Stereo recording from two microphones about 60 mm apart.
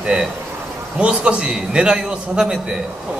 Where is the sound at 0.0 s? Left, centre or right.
Centre.